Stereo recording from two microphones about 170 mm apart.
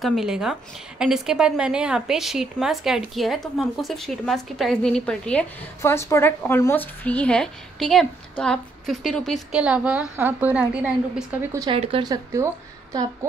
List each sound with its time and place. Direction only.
0.0 s a woman's voice: centre (ahead or behind)
5.8 s a woman's voice: 15° left (ahead or behind); by 11.2 s 10° right (ahead or behind)
11.7 s speech: 35° right (ahead or behind)
12.1 s speech: 20° right (ahead or behind)